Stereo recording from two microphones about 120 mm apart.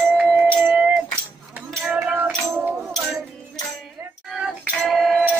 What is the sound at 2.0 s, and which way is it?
Music, 15° right (ahead or behind).